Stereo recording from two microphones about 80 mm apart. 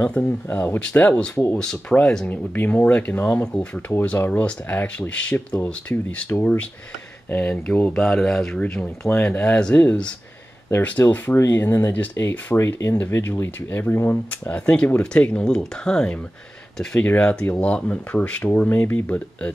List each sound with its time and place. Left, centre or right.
0.2 s speech: left; by 2.2 s centre
2.2 s speech: left
6.3 s speech: left
7.2 s speech: centre
11.3 s speech: left; by 16.2 s centre
17.2 s speech: centre